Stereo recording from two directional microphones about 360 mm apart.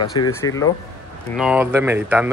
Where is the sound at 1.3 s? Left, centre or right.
Centre.